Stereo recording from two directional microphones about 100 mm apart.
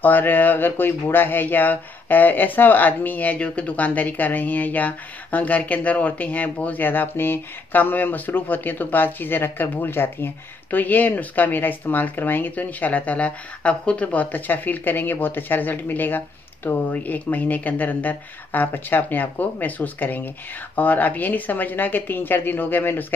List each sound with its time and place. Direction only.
0.0 s speech: 20° left (ahead or behind)